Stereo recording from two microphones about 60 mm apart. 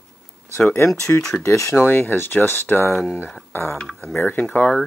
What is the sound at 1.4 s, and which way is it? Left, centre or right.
Speech, left.